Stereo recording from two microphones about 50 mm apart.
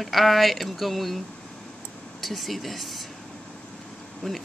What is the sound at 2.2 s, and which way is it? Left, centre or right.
Speech, centre.